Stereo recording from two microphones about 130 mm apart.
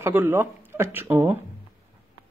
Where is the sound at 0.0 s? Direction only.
20° right (ahead or behind).